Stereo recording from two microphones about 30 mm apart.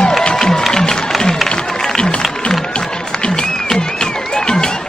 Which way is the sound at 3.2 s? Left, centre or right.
Left.